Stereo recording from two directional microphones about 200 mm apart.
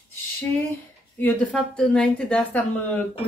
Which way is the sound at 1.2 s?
5° left (ahead or behind).